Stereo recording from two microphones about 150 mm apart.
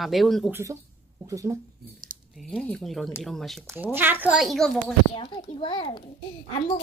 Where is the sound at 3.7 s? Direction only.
15° right (ahead or behind); by 4.8 s centre (ahead or behind).